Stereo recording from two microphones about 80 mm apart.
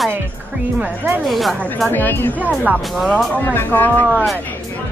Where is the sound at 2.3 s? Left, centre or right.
Centre.